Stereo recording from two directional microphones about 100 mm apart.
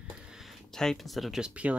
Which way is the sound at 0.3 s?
Centre (ahead or behind).